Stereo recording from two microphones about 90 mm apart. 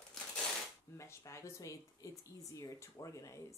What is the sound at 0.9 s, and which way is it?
A woman's voice, 30° left (ahead or behind).